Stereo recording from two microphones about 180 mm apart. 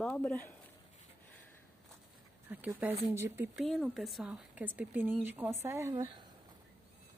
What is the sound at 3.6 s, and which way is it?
Speech, centre (ahead or behind).